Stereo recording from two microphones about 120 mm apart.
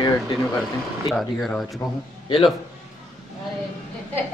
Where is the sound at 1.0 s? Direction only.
Centre (ahead or behind).